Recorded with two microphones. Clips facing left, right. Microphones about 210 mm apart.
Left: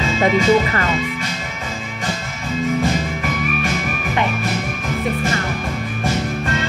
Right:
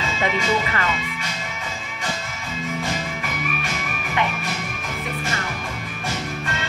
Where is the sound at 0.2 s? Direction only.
40° left (ahead or behind).